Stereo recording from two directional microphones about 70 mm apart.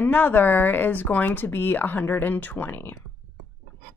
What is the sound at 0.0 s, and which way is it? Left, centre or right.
Speech, left.